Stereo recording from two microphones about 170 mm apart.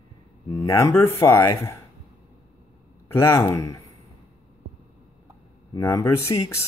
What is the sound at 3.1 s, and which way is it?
Speech, 15° left (ahead or behind).